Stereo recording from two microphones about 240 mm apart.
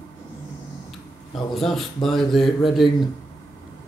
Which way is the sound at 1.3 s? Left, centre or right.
Centre.